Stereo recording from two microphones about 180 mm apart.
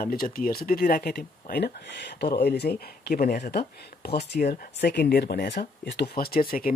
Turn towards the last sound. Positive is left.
turn(degrees=55)  # may be behind; listen again after turning